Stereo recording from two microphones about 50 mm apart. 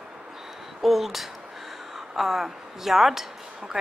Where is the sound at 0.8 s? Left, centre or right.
Centre.